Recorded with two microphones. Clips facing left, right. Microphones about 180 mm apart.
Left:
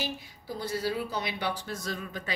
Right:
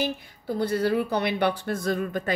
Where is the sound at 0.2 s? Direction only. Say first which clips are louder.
Right 9 dB; 60° right (ahead or behind).